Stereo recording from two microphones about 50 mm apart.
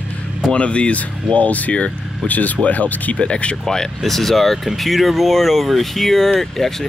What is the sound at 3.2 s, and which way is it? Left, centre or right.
Speech, left.